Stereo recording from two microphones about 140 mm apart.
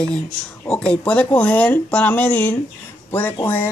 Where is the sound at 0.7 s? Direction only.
5° left (ahead or behind).